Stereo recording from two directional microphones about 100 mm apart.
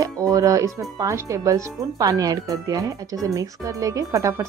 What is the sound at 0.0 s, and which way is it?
Speech, 35° right (ahead or behind).